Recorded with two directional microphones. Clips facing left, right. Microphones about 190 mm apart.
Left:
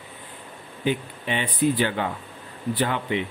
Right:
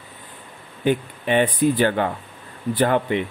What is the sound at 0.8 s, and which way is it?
Speech, 50° right (ahead or behind).